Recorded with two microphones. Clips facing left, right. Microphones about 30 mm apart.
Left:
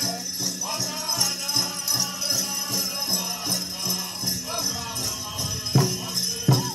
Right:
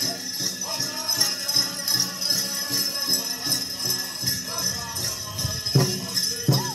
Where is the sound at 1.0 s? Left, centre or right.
Right.